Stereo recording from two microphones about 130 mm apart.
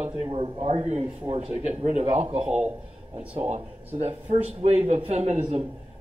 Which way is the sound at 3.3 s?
45° right (ahead or behind).